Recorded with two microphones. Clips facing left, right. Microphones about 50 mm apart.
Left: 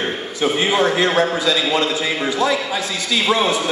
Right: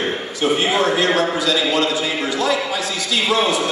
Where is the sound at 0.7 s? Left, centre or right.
Left.